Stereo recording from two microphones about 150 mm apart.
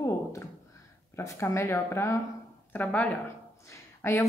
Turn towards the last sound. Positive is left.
turn(degrees=20)  # may be behind; listen again after turning